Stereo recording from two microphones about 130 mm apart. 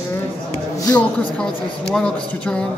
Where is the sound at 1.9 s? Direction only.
5° left (ahead or behind).